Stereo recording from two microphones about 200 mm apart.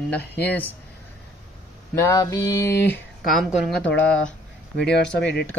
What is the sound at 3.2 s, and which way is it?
Speech, centre (ahead or behind).